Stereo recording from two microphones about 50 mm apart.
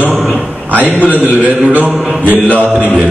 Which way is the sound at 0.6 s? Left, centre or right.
Right.